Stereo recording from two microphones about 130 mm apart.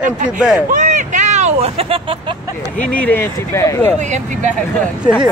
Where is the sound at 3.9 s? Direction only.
70° right (ahead or behind).